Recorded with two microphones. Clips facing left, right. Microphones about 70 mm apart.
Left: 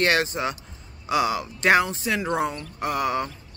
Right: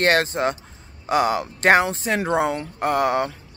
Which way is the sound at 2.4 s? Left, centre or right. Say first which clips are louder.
Right 4 dB; right.